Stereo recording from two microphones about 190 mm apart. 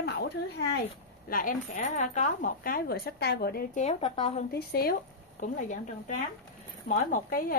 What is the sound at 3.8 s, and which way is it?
Speech, 30° left (ahead or behind).